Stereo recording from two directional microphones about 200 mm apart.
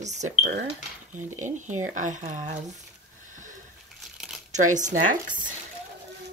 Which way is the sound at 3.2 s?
40° right (ahead or behind).